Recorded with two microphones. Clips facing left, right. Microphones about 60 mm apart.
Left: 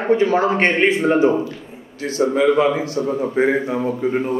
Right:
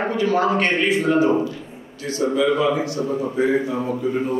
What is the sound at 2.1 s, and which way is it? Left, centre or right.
Speech, left.